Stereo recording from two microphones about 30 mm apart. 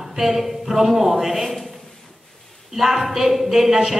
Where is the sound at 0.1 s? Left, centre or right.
Centre.